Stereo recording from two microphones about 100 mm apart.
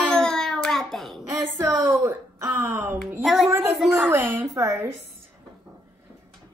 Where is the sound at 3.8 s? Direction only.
15° right (ahead or behind).